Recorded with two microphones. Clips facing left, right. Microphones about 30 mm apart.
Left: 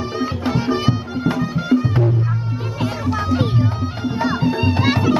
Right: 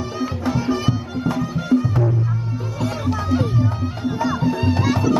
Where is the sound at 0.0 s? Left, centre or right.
Left.